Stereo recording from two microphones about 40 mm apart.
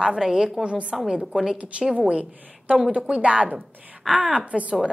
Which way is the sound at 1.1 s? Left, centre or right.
Centre.